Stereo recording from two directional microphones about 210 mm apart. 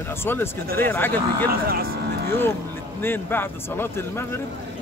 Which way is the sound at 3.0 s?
10° left (ahead or behind).